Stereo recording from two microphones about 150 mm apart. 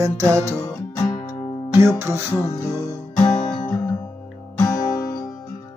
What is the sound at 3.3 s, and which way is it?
Music, 5° left (ahead or behind).